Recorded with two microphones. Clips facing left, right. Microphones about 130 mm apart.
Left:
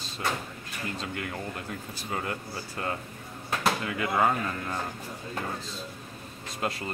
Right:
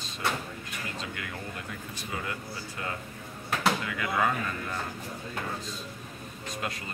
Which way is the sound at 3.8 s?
35° left (ahead or behind).